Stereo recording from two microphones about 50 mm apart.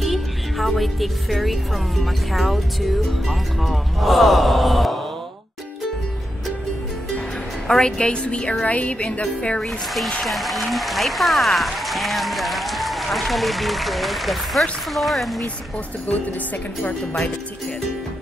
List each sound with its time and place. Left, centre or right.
0.0 s speech: centre
7.6 s a woman's voice: centre
10.2 s speech: centre